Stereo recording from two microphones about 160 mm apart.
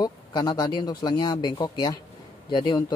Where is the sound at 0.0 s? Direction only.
25° left (ahead or behind).